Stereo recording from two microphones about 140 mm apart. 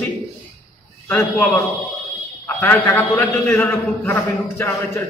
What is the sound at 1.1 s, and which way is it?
Speech, 15° left (ahead or behind).